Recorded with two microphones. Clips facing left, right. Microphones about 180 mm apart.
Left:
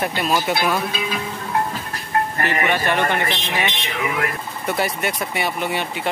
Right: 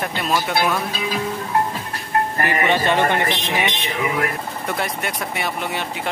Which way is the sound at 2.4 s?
20° right (ahead or behind).